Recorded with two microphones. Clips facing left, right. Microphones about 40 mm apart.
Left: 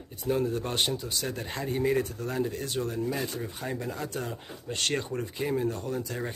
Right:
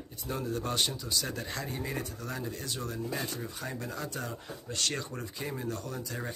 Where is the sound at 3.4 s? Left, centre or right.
Left.